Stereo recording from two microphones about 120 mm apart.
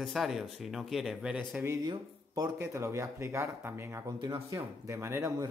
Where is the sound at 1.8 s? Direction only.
30° right (ahead or behind).